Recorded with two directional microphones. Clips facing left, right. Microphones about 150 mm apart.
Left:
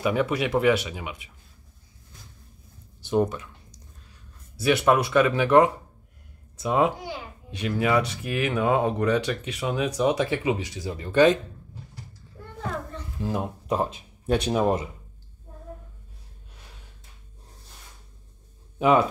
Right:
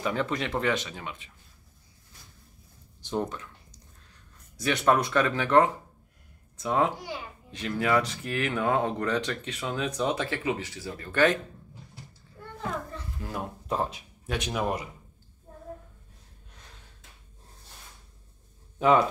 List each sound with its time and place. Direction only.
0.0 s speech: 10° left (ahead or behind)
3.0 s speech: 10° left (ahead or behind)
4.6 s speech: 10° left (ahead or behind)
13.2 s speech: 20° left (ahead or behind)
14.3 s speech: 30° left (ahead or behind)
18.8 s a man's voice: 15° left (ahead or behind)